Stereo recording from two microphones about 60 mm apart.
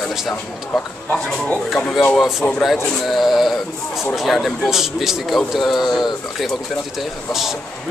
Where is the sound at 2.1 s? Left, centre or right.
Centre.